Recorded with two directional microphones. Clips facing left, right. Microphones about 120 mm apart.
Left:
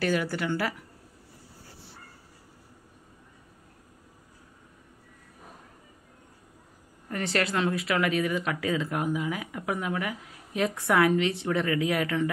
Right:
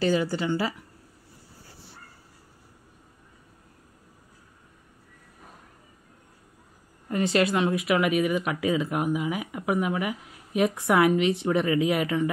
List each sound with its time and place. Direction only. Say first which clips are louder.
0.0 s speech: right 3 dB; 25° right (ahead or behind)
7.1 s speech: right 5 dB; 20° right (ahead or behind)